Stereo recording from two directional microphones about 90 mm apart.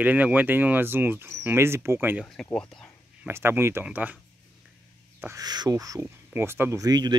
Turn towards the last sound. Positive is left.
turn(degrees=-50)  # may be behind; listen again after turning